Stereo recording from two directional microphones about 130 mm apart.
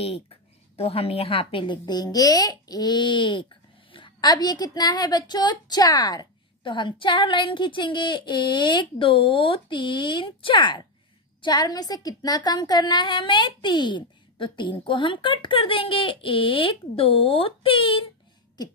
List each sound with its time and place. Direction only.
0.7 s a woman's voice: 50° left (ahead or behind)